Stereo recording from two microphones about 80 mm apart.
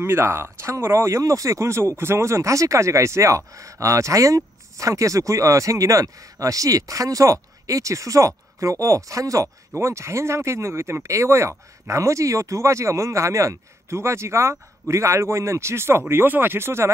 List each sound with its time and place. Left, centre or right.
0.0 s speech: right